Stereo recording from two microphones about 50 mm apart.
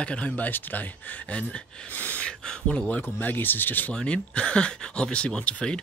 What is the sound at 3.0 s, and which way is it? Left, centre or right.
Speech, left.